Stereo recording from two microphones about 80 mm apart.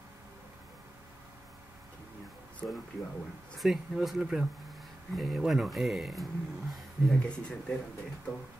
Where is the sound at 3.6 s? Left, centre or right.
Centre.